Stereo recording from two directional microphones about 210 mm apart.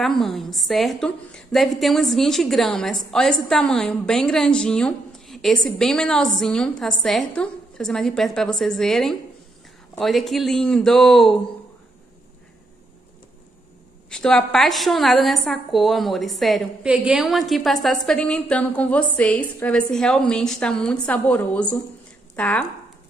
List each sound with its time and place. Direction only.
0.0 s a woman's voice: centre (ahead or behind)
14.1 s a woman's voice: 5° left (ahead or behind)